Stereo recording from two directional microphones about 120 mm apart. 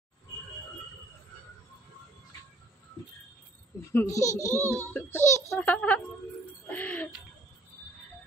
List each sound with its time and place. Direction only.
3.9 s a child's voice: 25° left (ahead or behind)
5.6 s a woman's voice: 10° left (ahead or behind)
6.7 s music: 15° left (ahead or behind)